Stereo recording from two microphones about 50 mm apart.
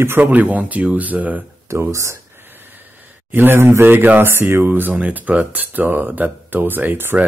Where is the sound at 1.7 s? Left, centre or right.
Right.